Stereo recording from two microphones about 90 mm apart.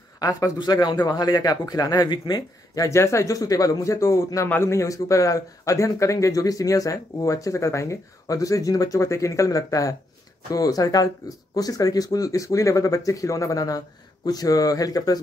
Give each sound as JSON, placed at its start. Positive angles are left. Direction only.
{"t": 0.6, "sound": "speech", "side_deg": 55}
{"t": 2.7, "sound": "speech", "side_deg": 35}